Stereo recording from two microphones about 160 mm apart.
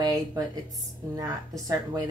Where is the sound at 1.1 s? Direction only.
20° right (ahead or behind).